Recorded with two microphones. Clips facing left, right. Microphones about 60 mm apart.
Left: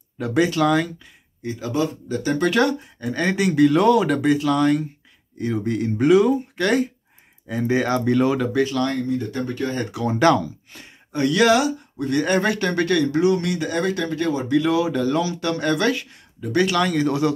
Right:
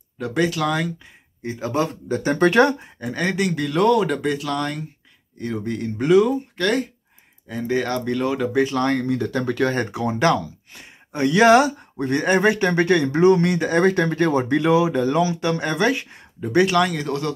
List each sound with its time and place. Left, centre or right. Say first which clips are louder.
0.2 s speech: left 2 dB; centre
1.4 s speech: even; right
3.0 s speech: left 1 dB; centre
8.7 s speech: right 2 dB; right
9.0 s speech: right 2 dB; right
10.1 s speech: left 3 dB; centre
10.8 s speech: even; right
11.5 s speech: right 4 dB; right
14.7 s speech: right 2 dB; right
16.7 s speech: even; centre